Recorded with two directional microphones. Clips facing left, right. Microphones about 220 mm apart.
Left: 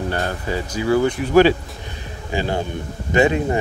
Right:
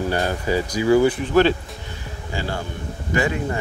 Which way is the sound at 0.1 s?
10° right (ahead or behind).